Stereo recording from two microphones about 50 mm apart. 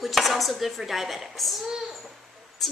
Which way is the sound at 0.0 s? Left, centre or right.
Centre.